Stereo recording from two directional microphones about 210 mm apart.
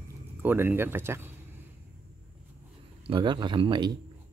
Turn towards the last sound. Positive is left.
turn(degrees=-20)  # may be behind; listen again after turning